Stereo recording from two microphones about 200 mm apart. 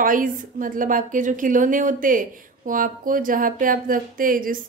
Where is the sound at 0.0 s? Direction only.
45° right (ahead or behind).